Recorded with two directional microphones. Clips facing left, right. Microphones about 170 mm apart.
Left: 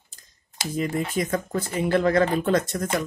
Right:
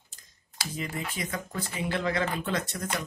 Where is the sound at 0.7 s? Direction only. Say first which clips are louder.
Left 10 dB; 45° left (ahead or behind).